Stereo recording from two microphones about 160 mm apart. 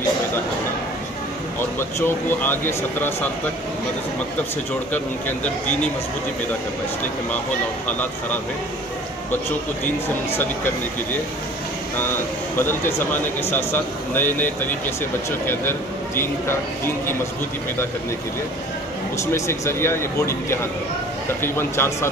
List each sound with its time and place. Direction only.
1.6 s speech: 15° left (ahead or behind)
4.9 s speech: 10° left (ahead or behind)
10.3 s speech: 10° left (ahead or behind)
12.5 s speech: 15° left (ahead or behind)
16.2 s speech: 15° left (ahead or behind)
19.1 s speech: 20° left (ahead or behind)